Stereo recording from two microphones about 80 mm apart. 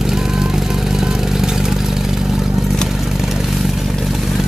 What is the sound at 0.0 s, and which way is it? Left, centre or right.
Vehicle, centre.